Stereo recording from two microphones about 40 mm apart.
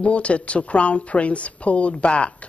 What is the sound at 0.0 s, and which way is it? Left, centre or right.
A woman's voice, left.